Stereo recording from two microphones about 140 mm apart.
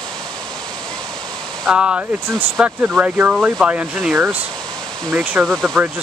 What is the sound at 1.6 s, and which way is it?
Speech, 5° right (ahead or behind).